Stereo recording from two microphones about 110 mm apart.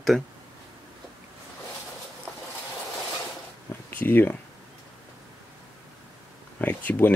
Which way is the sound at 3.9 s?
15° left (ahead or behind).